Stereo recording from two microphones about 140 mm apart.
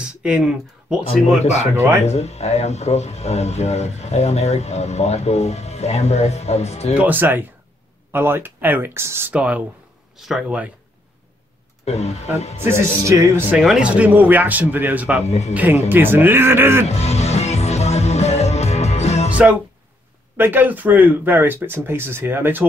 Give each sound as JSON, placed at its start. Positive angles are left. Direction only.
{"t": 0.2, "sound": "speech", "side_deg": -5}
{"t": 1.0, "sound": "speech", "side_deg": 50}
{"t": 1.8, "sound": "speech", "side_deg": -20}
{"t": 2.0, "sound": "speech", "side_deg": 50}
{"t": 7.0, "sound": "speech", "side_deg": -15}
{"t": 11.8, "sound": "speech", "side_deg": 50}
{"t": 13.5, "sound": "speech", "side_deg": -5}
{"t": 15.2, "sound": "speech", "side_deg": 50}
{"t": 15.5, "sound": "speech", "side_deg": -15}
{"t": 16.9, "sound": "music", "side_deg": 50}
{"t": 20.3, "sound": "speech", "side_deg": -15}